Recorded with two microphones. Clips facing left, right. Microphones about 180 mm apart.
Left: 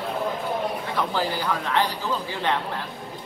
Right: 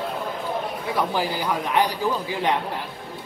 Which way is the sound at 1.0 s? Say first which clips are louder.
Right 3 dB; 15° right (ahead or behind).